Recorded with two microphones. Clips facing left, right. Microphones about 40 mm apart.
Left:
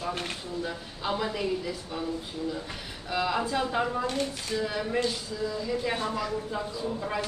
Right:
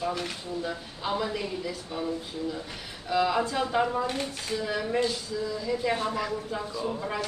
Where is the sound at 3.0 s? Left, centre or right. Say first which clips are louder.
Right 3 dB; centre.